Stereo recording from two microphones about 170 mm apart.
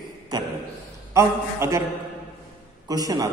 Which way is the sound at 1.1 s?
15° right (ahead or behind).